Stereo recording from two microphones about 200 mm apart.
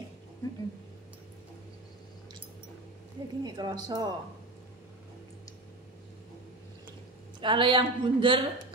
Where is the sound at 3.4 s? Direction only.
20° right (ahead or behind).